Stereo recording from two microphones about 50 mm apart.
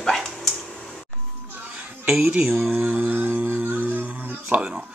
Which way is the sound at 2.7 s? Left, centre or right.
Right.